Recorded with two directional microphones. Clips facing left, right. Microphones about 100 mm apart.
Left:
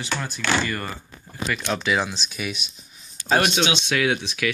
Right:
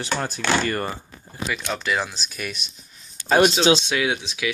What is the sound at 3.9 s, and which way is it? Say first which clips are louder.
Speech: left 1 dB; 20° right (ahead or behind).